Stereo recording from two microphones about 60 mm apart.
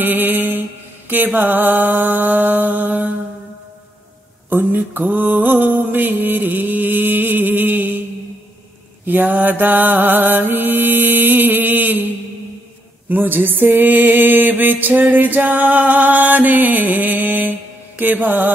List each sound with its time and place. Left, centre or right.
0.0 s music: right
4.5 s mantra: right
9.0 s music: right
13.1 s music: right